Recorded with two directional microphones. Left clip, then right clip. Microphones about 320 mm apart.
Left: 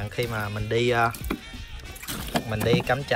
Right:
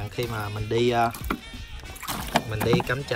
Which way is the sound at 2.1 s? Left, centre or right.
Right.